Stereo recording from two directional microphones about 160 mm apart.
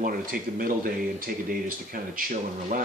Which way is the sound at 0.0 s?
60° right (ahead or behind).